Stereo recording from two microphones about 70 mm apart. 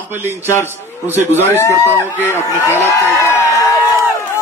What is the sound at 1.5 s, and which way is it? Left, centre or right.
Speech, left.